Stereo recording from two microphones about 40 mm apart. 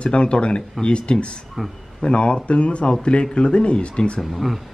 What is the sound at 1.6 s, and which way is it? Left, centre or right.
Speech, centre.